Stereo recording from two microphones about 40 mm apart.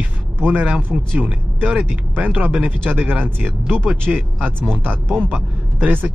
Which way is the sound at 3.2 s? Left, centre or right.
Right.